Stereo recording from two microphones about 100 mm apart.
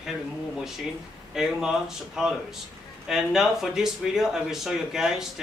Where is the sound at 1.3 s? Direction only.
5° right (ahead or behind).